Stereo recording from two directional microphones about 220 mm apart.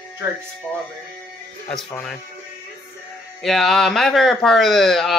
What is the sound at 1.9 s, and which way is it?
Speech, 10° left (ahead or behind).